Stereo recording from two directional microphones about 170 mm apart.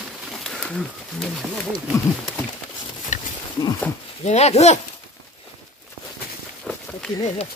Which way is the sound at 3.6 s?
20° left (ahead or behind).